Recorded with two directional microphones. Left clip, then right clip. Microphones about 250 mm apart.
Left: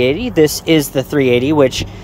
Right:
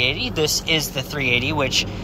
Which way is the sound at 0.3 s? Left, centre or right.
Left.